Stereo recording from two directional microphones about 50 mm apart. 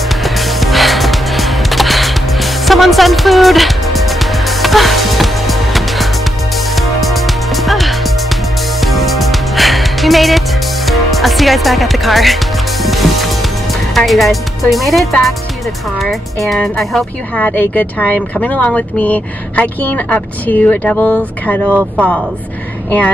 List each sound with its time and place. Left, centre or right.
0.2 s music: centre
10.9 s speech: centre
12.8 s music: centre
13.9 s speech: centre
16.6 s speech: centre
17.4 s speech: left